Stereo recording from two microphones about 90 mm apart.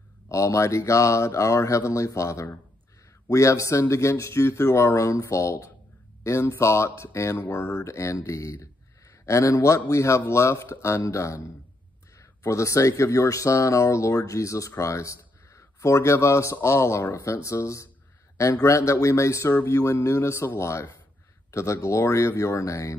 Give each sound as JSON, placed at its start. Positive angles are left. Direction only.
{"t": 0.3, "sound": "speech", "side_deg": 35}